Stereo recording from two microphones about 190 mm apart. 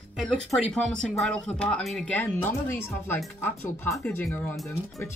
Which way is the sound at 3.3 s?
10° left (ahead or behind).